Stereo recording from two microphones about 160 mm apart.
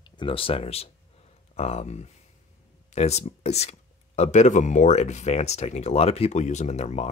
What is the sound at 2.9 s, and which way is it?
Speech, 45° left (ahead or behind).